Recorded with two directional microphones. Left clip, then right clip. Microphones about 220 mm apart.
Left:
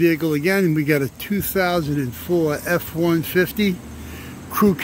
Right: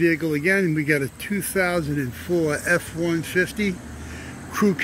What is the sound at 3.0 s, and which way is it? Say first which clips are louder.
Speech: left 3 dB; 25° left (ahead or behind).